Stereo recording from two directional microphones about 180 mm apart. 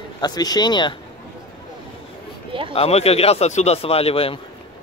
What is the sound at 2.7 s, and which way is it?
Speech, 35° left (ahead or behind).